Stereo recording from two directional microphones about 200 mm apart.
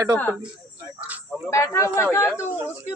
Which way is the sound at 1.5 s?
15° left (ahead or behind).